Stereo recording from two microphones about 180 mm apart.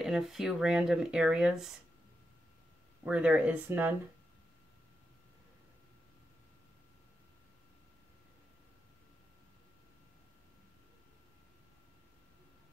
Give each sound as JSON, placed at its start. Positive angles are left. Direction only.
{"t": 0.0, "sound": "speech", "side_deg": 0}
{"t": 3.1, "sound": "speech", "side_deg": -5}